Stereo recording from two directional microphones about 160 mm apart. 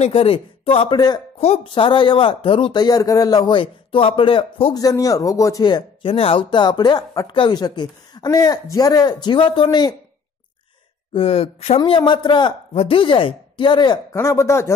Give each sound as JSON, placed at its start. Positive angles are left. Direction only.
{"t": 0.0, "sound": "speech", "side_deg": 35}
{"t": 4.7, "sound": "speech", "side_deg": 20}
{"t": 11.1, "sound": "speech", "side_deg": 35}
{"t": 14.1, "sound": "speech", "side_deg": 15}